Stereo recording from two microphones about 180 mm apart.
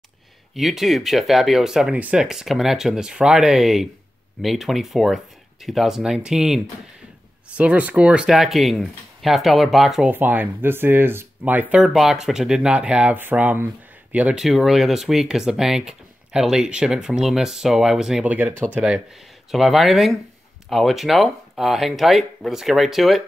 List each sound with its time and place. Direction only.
0.6 s speech: centre (ahead or behind)